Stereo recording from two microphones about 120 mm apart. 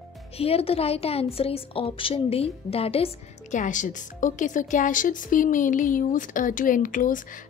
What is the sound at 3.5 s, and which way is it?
Speech, 90° left.